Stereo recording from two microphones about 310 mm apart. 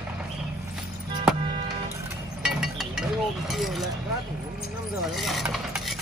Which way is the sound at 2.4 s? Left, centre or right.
Centre.